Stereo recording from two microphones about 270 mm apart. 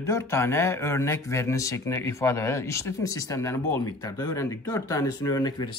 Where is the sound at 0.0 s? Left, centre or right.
Centre.